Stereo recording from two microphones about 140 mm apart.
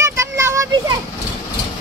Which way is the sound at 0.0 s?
20° right (ahead or behind).